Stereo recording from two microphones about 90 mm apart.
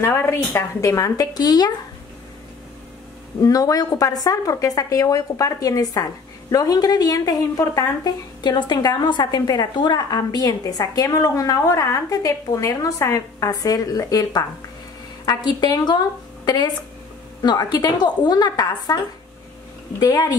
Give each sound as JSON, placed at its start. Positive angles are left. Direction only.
{"t": 0.0, "sound": "a woman's voice", "side_deg": 30}
{"t": 3.3, "sound": "a woman's voice", "side_deg": 40}
{"t": 8.4, "sound": "a woman's voice", "side_deg": 55}
{"t": 20.0, "sound": "a woman's voice", "side_deg": 50}